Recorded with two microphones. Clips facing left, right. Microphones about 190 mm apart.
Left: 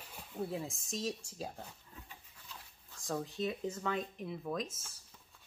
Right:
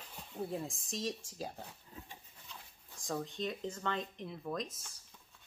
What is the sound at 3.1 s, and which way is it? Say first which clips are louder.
Speech: left 2 dB; 5° left (ahead or behind).